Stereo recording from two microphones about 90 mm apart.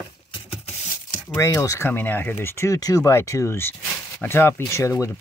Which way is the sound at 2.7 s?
40° left (ahead or behind).